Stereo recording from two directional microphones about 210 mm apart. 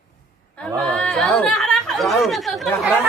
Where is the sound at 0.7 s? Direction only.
5° left (ahead or behind).